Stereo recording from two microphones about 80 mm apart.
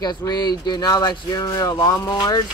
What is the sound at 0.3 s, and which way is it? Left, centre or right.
Speech, left.